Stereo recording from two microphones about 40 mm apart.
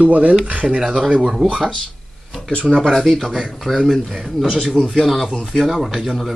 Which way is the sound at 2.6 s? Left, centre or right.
Centre.